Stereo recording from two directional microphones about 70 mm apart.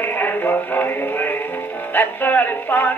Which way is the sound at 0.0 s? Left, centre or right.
Left.